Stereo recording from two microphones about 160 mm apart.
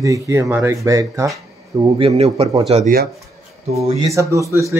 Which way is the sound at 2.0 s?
40° right (ahead or behind).